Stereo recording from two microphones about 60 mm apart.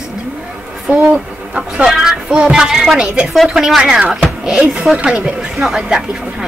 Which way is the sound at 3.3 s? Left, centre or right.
Centre.